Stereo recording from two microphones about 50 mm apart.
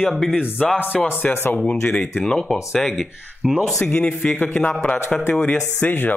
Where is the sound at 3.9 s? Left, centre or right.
Left.